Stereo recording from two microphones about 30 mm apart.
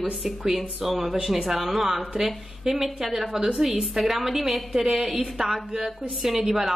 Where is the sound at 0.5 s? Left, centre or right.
Centre.